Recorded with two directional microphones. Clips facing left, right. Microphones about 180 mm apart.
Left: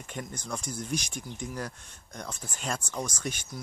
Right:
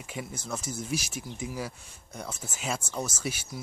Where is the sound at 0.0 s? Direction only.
5° right (ahead or behind).